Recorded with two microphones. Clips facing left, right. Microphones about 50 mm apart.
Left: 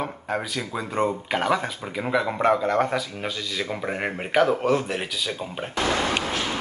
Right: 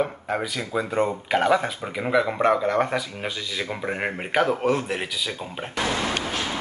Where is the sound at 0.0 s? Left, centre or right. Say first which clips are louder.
Right 3 dB; centre.